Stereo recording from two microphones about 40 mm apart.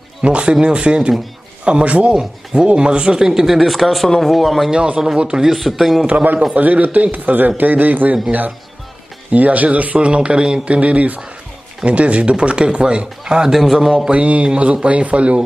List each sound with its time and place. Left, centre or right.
0.2 s speech: right
3.5 s speech: centre
4.7 s speech: right
5.4 s speech: centre
6.5 s a man's voice: right
9.9 s speech: right
14.1 s a man's voice: right